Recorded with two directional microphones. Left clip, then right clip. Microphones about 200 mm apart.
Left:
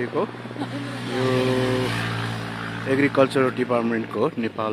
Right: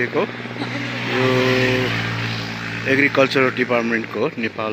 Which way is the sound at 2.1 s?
40° left (ahead or behind).